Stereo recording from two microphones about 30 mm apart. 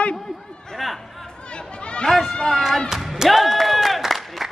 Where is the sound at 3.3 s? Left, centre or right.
Centre.